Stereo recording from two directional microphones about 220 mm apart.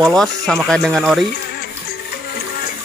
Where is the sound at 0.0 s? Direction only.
Centre (ahead or behind).